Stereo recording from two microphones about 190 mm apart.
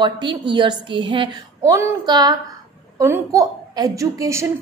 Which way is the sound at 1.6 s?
15° right (ahead or behind).